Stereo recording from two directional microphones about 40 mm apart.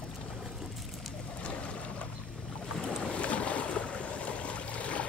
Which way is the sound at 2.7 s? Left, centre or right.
Left.